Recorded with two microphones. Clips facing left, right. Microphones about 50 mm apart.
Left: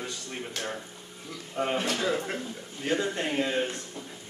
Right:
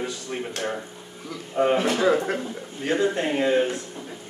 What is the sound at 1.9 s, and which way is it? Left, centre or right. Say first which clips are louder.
A man's voice: right 8 dB; right.